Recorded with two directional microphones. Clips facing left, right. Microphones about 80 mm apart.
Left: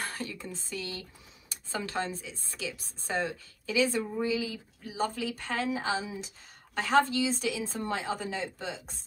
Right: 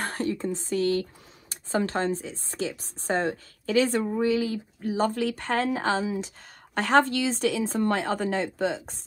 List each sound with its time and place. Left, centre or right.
0.0 s speech: right
4.0 s speech: right